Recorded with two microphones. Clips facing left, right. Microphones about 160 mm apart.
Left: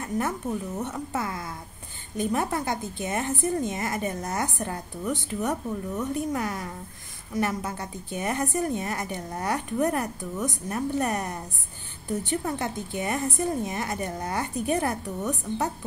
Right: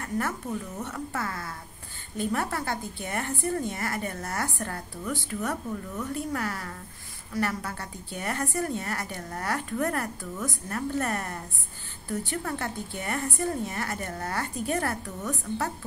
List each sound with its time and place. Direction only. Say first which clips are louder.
0.0 s a woman's voice: left 2 dB; 20° left (ahead or behind)